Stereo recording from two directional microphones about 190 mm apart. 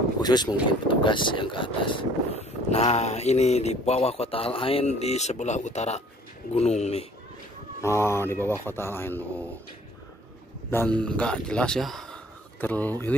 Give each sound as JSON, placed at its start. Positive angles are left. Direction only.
{"t": 0.2, "sound": "speech", "side_deg": 20}
{"t": 7.8, "sound": "speech", "side_deg": 15}
{"t": 10.7, "sound": "speech", "side_deg": 10}